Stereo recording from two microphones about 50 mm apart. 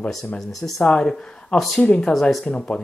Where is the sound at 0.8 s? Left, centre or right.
Left.